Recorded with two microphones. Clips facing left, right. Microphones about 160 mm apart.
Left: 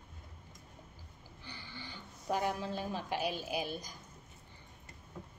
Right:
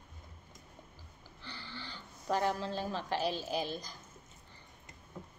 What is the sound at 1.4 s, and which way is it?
Speech, 15° left (ahead or behind).